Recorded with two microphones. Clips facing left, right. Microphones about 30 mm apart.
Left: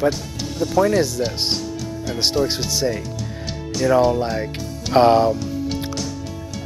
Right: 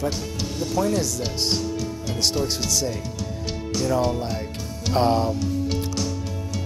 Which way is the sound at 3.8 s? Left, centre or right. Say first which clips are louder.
Left 7 dB; left.